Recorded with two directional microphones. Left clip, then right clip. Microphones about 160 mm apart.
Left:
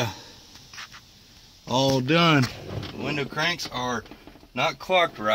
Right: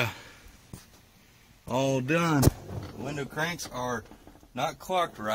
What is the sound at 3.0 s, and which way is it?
Speech, 15° right (ahead or behind).